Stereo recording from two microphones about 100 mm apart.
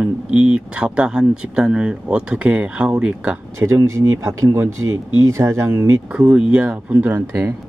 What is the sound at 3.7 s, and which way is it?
Speech, 30° right (ahead or behind).